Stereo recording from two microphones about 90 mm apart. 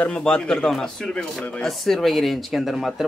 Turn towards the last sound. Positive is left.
turn(degrees=0)  # may be behind; listen again after turning